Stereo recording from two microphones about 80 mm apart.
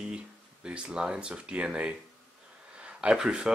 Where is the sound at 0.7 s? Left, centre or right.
Centre.